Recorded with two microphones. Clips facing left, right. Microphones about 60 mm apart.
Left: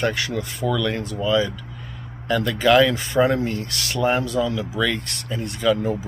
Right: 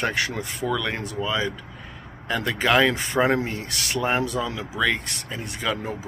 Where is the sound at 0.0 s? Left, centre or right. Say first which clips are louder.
Left 2 dB; right.